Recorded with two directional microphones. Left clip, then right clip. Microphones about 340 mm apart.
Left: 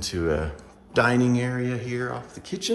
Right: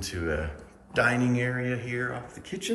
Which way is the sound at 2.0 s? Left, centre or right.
Centre.